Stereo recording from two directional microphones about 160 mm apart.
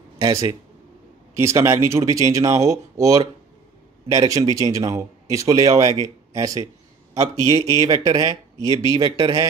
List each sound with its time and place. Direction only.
0.2 s speech: 20° right (ahead or behind)